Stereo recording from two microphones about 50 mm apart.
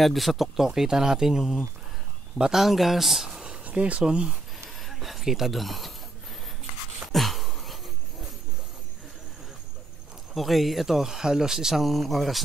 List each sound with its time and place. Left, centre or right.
0.0 s speech: centre
2.6 s speech: centre
3.6 s speech: right
4.6 s speech: centre
7.1 s a sound: centre
10.3 s speech: centre